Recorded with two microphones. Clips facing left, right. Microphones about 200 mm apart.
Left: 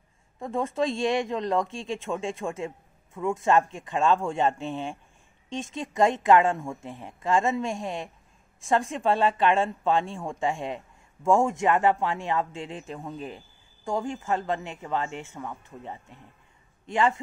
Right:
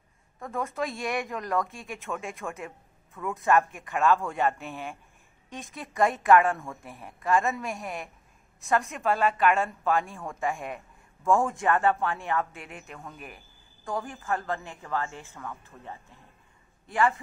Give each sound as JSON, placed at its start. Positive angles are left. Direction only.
{"t": 0.4, "sound": "a woman's voice", "side_deg": 25}